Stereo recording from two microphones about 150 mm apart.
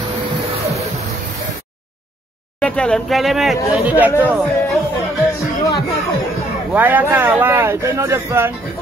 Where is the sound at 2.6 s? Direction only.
5° left (ahead or behind).